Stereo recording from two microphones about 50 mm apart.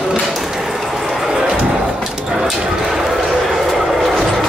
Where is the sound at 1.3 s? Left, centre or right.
Centre.